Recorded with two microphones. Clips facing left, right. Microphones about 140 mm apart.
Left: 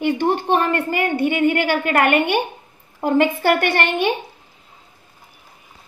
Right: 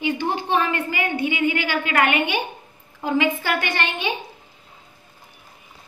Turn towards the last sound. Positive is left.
turn(degrees=60)  # may be behind; listen again after turning